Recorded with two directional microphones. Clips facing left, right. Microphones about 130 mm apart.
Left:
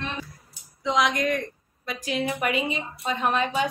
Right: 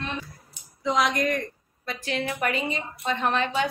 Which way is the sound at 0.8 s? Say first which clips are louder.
Even; centre (ahead or behind).